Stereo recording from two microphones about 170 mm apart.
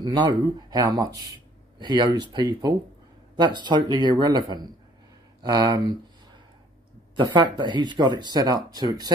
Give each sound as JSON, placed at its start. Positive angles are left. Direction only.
{"t": 0.1, "sound": "speech", "side_deg": -25}
{"t": 7.2, "sound": "speech", "side_deg": -25}